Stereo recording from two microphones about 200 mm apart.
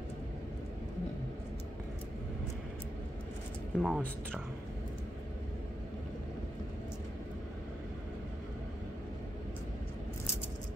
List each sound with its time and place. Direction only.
3.7 s speech: 5° left (ahead or behind)